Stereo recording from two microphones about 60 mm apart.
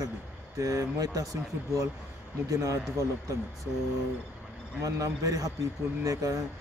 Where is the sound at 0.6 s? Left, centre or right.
Right.